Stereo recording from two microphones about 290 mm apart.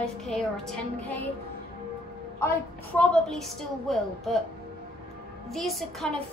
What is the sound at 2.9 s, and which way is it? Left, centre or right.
A woman's voice, centre.